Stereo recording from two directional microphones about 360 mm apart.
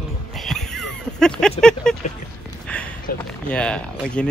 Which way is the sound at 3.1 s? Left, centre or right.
Left.